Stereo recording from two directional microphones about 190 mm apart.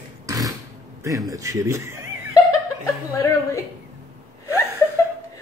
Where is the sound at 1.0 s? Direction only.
20° right (ahead or behind).